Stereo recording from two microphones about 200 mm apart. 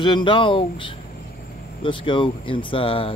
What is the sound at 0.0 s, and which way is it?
Speech, 25° left (ahead or behind).